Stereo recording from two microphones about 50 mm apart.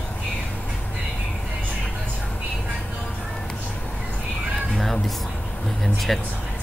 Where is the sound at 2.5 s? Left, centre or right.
Centre.